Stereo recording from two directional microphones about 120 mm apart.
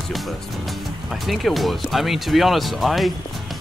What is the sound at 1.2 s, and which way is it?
Speech, centre (ahead or behind).